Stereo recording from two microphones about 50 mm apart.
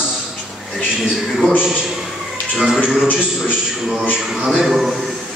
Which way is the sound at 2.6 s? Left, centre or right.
Centre.